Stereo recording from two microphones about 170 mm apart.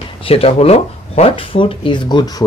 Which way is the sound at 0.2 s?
35° left (ahead or behind).